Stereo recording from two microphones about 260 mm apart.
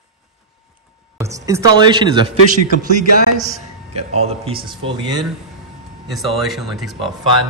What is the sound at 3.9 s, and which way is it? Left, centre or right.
Speech, right.